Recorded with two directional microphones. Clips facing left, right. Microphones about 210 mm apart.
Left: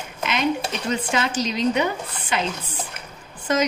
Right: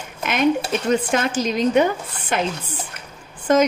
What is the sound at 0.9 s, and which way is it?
Speech, 50° right (ahead or behind).